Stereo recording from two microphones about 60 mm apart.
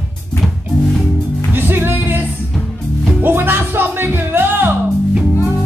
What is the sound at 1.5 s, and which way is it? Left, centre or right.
Music, right.